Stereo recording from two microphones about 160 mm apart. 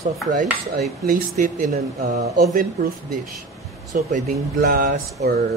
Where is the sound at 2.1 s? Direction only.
90° right.